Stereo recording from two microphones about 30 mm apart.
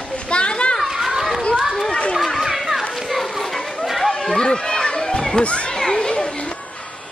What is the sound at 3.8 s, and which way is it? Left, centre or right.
Children playing, centre.